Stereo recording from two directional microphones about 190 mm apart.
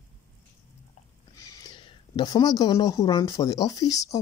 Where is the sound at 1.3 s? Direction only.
20° left (ahead or behind).